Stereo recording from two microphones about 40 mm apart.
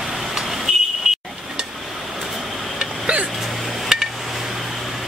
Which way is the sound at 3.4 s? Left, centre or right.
Centre.